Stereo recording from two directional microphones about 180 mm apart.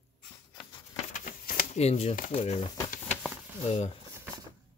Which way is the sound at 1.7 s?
35° left (ahead or behind).